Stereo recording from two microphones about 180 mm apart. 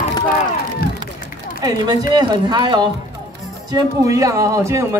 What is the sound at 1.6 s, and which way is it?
Speech, 25° right (ahead or behind).